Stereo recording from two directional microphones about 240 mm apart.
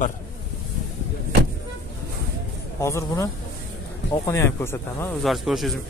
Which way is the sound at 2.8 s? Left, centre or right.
Centre.